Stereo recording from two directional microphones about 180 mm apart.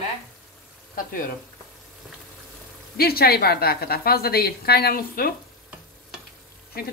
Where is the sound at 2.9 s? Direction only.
60° left (ahead or behind).